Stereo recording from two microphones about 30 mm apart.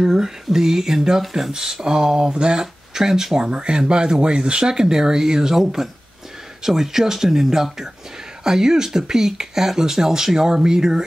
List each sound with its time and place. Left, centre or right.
0.0 s speech: centre
2.6 s speech: centre
3.3 s speech: right